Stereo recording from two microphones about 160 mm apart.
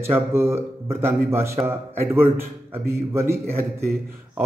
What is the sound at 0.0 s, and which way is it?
Speech, 15° right (ahead or behind).